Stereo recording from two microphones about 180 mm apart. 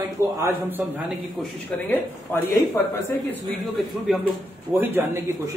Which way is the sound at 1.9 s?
15° left (ahead or behind).